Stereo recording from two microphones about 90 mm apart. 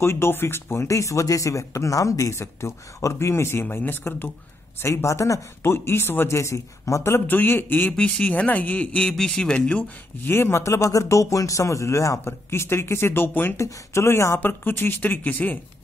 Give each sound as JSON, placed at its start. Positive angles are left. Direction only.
{"t": 0.0, "sound": "speech", "side_deg": 30}
{"t": 10.3, "sound": "speech", "side_deg": 30}